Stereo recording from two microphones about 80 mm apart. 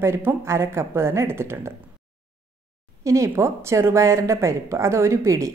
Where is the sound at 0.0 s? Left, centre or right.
Right.